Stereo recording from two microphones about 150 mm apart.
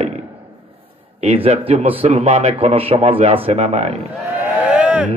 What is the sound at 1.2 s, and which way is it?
Speech, 45° right (ahead or behind).